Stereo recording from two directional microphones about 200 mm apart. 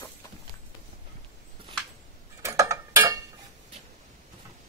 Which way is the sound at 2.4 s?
15° right (ahead or behind).